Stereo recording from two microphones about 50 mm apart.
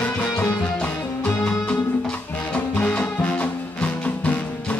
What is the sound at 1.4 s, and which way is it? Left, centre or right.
Music, left.